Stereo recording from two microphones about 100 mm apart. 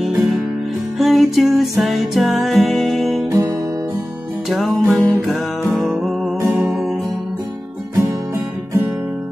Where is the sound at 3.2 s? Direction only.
35° right (ahead or behind).